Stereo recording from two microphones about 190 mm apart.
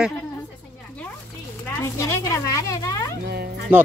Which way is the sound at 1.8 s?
15° left (ahead or behind).